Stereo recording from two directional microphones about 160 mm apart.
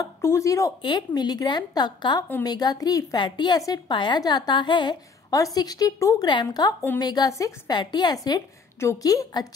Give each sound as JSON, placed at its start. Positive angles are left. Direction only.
{"t": 0.0, "sound": "a woman's voice", "side_deg": 20}